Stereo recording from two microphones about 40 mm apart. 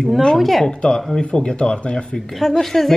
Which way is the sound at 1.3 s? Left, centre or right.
Left.